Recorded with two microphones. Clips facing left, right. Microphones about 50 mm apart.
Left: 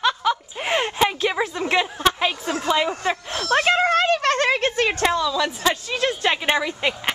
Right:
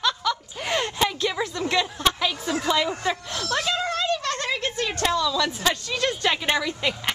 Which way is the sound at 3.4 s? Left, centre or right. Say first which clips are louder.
Left 8 dB; left.